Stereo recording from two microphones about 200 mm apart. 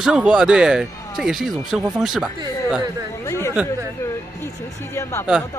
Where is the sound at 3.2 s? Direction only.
15° left (ahead or behind).